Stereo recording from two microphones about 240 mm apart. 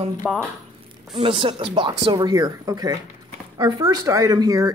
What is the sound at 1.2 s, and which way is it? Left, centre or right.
Speech, right.